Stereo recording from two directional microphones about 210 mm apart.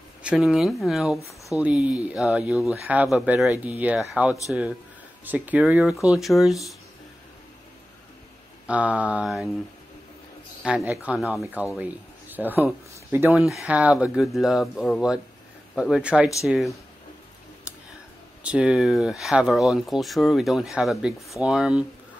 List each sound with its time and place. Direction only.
0.2 s speech: 5° right (ahead or behind)
8.6 s speech: 5° right (ahead or behind)
10.9 s speech: 5° right (ahead or behind)
18.4 s speech: 5° right (ahead or behind)